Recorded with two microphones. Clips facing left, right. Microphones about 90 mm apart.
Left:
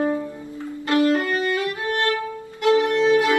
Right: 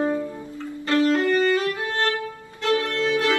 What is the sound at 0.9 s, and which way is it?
Music, 20° left (ahead or behind).